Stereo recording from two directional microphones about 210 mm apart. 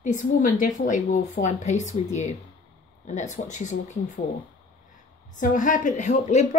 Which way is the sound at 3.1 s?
35° left (ahead or behind).